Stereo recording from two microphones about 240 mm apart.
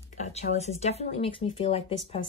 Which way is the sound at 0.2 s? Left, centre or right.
Left.